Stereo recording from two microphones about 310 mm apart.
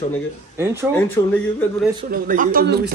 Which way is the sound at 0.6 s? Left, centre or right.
Centre.